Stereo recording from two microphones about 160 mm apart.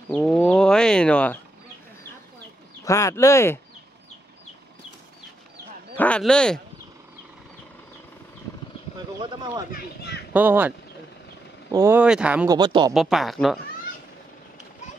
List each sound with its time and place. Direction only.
0.1 s speech: 10° left (ahead or behind)
2.8 s speech: 20° left (ahead or behind)
5.9 s speech: 5° left (ahead or behind)
8.9 s a sound: 30° right (ahead or behind)
9.7 s a child's voice: 70° left (ahead or behind)
10.3 s speech: 10° right (ahead or behind)
11.7 s speech: 15° right (ahead or behind)
12.4 s speech: 30° right (ahead or behind)
12.9 s speech: centre (ahead or behind)